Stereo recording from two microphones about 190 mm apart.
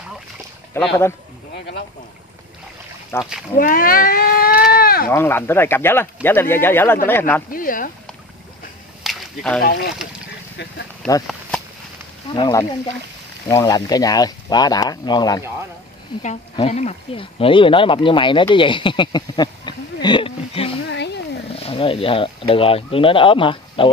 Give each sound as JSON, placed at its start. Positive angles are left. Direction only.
{"t": 0.8, "sound": "speech", "side_deg": 15}
{"t": 3.1, "sound": "speech", "side_deg": 15}
{"t": 3.5, "sound": "speech", "side_deg": 45}
{"t": 4.6, "sound": "livestock", "side_deg": 50}
{"t": 5.1, "sound": "speech", "side_deg": 10}
{"t": 7.5, "sound": "speech", "side_deg": 45}
{"t": 9.0, "sound": "whip", "side_deg": 0}
{"t": 9.7, "sound": "speech", "side_deg": 55}
{"t": 11.0, "sound": "speech", "side_deg": 5}
{"t": 12.4, "sound": "speech", "side_deg": 20}
{"t": 16.5, "sound": "speech", "side_deg": 35}
{"t": 20.9, "sound": "speech", "side_deg": 65}
{"t": 21.6, "sound": "speech", "side_deg": 30}